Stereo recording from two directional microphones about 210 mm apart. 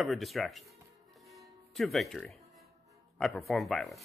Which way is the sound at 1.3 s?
Centre (ahead or behind).